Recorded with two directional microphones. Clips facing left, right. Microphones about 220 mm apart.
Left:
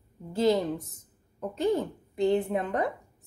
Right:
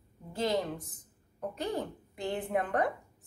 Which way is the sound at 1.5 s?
25° left (ahead or behind).